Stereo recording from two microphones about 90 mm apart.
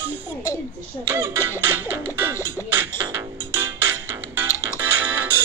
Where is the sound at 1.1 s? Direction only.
25° right (ahead or behind).